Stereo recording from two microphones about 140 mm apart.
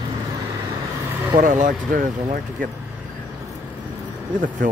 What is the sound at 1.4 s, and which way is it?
Speech, 65° right (ahead or behind).